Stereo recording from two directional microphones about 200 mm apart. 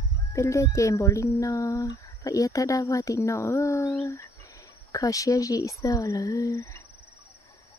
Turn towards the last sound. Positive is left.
turn(degrees=15)  # may be behind; listen again after turning